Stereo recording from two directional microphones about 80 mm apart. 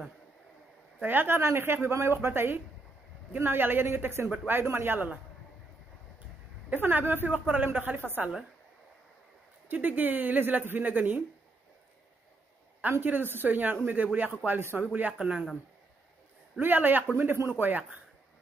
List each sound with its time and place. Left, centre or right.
1.0 s a woman's voice: right
6.7 s a woman's voice: right
9.7 s a woman's voice: right
13.0 s a woman's voice: right
14.8 s speech: centre
16.5 s a woman's voice: right